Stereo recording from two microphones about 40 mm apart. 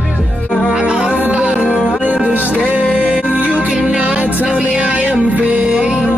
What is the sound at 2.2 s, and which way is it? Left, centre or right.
Music, right.